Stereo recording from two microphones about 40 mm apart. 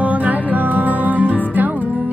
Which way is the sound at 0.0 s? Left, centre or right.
Right.